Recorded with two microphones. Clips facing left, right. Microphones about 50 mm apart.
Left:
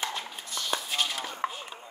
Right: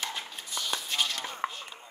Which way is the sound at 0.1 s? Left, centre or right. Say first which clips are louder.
Left 1 dB; centre.